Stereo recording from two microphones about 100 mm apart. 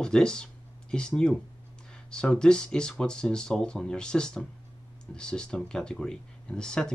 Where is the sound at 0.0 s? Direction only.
10° left (ahead or behind).